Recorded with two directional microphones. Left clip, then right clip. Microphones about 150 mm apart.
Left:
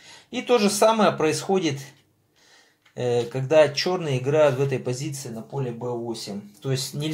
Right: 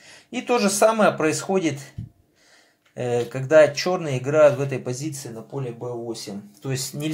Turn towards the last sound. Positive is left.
turn(degrees=-10)  # may be behind; listen again after turning